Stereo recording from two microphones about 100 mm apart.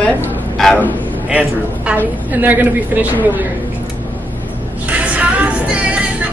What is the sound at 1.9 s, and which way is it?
A woman's voice, 15° right (ahead or behind).